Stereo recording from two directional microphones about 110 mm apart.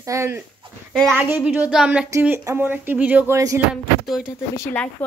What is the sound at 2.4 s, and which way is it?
Speech, 20° right (ahead or behind).